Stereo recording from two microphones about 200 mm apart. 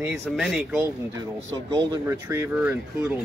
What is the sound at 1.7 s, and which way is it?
Speech, 15° right (ahead or behind).